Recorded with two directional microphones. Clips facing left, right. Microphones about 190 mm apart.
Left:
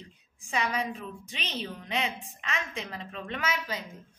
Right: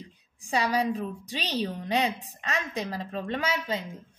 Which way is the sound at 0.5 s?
35° right (ahead or behind).